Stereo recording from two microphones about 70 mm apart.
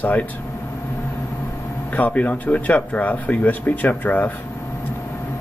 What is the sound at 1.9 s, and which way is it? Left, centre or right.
Speech, left.